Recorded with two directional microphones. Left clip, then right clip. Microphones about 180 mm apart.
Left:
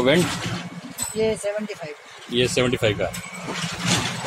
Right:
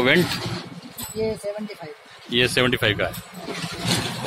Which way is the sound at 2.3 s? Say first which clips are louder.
Right 1 dB; 5° left (ahead or behind).